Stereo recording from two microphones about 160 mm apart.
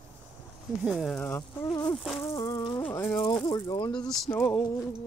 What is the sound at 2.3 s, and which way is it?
Speech, 20° left (ahead or behind).